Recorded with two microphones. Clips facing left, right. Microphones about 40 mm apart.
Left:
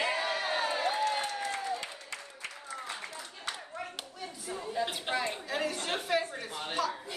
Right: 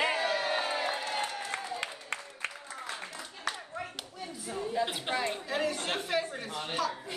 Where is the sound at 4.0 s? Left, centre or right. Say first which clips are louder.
Right 1 dB; centre.